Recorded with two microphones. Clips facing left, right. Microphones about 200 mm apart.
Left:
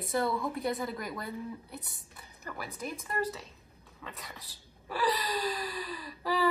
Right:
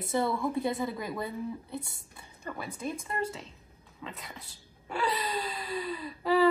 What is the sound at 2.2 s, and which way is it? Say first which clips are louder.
Speech: right 3 dB; 25° right (ahead or behind).